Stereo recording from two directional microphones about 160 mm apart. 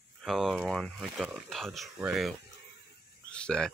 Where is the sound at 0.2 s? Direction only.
Centre (ahead or behind).